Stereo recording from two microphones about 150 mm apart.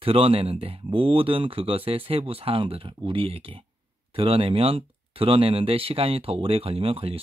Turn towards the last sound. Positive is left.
turn(degrees=-40)  # may be behind; listen again after turning